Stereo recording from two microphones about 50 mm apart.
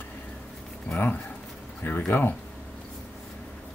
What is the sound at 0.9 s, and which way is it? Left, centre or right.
Speech, left.